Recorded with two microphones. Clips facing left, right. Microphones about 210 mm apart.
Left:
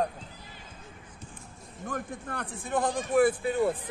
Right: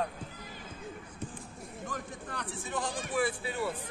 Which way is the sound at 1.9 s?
55° left (ahead or behind).